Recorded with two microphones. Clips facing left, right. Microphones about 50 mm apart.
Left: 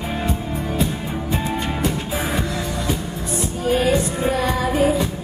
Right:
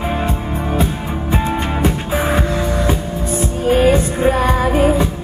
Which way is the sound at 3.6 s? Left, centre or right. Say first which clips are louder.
Right 5 dB; right.